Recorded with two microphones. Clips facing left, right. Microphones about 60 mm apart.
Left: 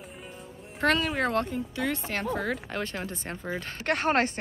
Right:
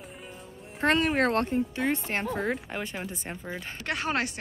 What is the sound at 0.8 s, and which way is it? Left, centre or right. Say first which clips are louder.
Speech: right 1 dB; right.